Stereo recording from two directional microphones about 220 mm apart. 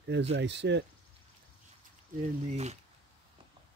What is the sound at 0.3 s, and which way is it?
Speech, 55° right (ahead or behind).